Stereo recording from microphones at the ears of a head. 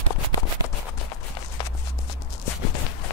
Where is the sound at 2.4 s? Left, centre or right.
Left.